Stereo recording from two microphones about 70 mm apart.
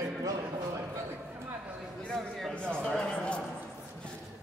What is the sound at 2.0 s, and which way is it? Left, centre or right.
Speech, centre.